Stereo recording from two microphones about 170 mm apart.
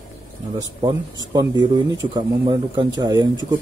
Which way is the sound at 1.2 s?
25° right (ahead or behind).